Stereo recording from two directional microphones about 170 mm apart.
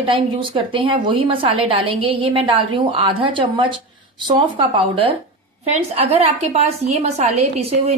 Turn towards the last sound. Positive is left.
turn(degrees=-40)  # may be behind; listen again after turning